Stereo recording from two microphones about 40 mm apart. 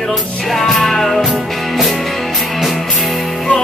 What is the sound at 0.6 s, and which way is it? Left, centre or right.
Music, centre.